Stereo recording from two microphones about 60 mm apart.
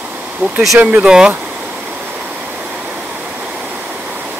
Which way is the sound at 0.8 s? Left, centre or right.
Right.